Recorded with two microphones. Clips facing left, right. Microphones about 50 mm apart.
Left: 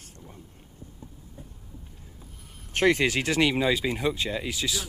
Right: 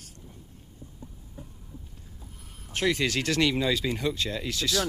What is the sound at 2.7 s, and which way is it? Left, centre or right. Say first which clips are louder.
Speech: left 4 dB; left.